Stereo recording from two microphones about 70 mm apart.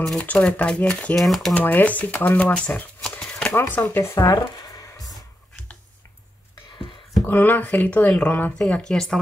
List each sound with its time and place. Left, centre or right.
0.2 s speech: left
1.1 s speech: centre
1.5 s speech: left
3.0 s a sound: centre
3.5 s speech: left
4.0 s a sound: left
7.2 s speech: left
8.8 s speech: centre